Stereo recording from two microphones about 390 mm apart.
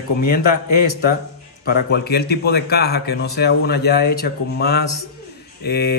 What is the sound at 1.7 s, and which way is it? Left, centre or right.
Speech, left.